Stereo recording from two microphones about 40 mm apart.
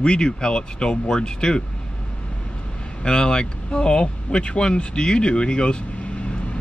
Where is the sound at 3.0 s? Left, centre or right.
Left.